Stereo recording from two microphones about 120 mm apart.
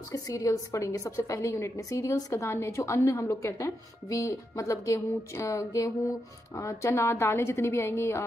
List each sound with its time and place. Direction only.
0.1 s a woman's voice: 30° left (ahead or behind)